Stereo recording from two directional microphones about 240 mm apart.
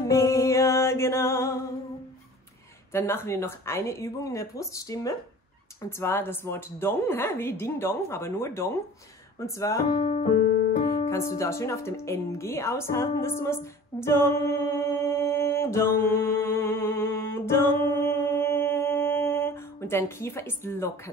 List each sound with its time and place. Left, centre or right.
0.0 s music: centre
2.9 s a woman's voice: centre
9.9 s keyboard: left
11.1 s music: centre